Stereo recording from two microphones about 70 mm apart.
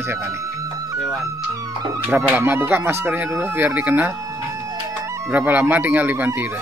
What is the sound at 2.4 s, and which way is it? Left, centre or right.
Speech, right.